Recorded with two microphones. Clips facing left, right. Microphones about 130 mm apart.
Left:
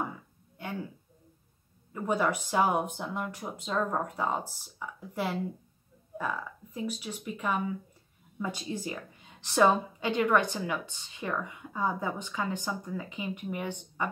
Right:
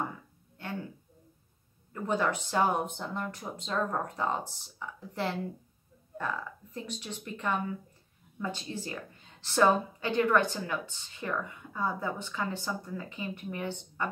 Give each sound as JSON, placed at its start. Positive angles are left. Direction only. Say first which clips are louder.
{"t": 1.9, "sound": "a woman's voice", "louder": "left 1 dB", "side_deg": 10}